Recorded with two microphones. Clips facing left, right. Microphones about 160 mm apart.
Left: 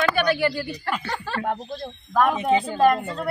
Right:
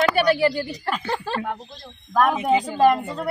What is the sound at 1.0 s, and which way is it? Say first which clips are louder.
Speech: right 4 dB; 35° right (ahead or behind).